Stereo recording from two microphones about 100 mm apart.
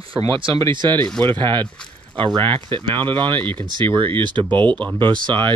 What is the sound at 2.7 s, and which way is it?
Speech, 55° right (ahead or behind).